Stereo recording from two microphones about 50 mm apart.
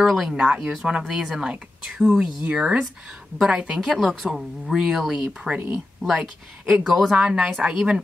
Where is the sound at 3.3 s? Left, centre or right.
Centre.